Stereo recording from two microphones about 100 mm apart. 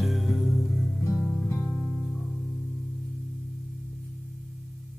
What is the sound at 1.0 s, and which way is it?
Music, 25° left (ahead or behind).